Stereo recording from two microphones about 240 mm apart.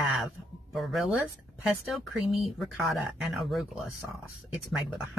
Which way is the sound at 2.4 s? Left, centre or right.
Centre.